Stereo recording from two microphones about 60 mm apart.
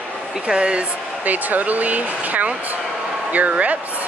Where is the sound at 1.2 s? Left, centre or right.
Right.